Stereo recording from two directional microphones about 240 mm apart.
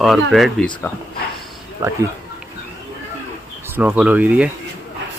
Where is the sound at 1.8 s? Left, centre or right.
Centre.